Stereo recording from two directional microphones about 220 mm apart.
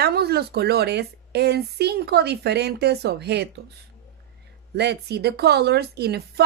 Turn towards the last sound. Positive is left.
turn(degrees=-45)  # may be behind; listen again after turning